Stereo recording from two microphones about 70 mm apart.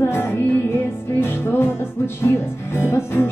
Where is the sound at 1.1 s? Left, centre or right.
Left.